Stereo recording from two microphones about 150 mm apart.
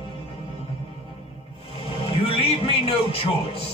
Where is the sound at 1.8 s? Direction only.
40° left (ahead or behind).